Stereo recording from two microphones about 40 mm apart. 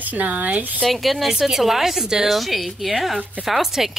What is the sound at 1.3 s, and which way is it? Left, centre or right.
A woman's voice, centre.